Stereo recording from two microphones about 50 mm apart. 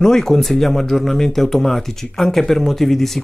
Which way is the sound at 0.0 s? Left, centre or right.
Centre.